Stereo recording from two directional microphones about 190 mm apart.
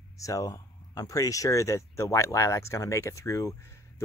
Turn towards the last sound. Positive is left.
turn(degrees=15)  # may be behind; listen again after turning